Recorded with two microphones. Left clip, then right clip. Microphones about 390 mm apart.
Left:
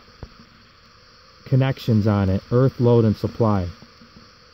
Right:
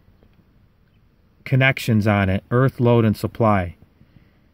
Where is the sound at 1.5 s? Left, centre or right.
Centre.